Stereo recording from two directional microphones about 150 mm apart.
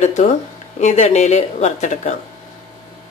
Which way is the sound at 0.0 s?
50° left (ahead or behind).